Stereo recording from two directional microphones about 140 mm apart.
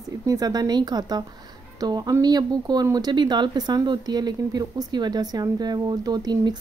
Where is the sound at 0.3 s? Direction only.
25° right (ahead or behind).